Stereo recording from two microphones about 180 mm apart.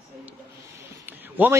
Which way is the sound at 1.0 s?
10° right (ahead or behind).